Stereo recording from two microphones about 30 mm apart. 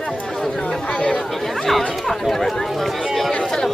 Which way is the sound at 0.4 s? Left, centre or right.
Centre.